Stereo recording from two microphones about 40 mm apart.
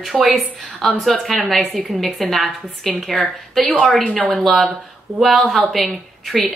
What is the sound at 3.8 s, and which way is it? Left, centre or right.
Speech, left.